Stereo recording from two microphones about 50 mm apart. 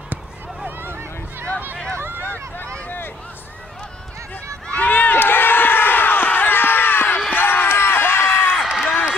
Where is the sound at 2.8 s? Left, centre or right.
Left.